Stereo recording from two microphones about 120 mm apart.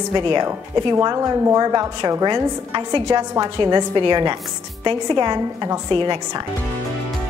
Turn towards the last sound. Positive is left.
turn(degrees=-40)  # may be behind; listen again after turning